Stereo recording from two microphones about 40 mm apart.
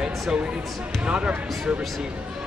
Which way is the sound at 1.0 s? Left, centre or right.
Right.